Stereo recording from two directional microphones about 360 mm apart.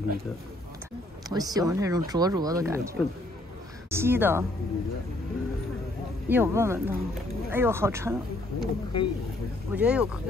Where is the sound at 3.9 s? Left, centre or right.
Centre.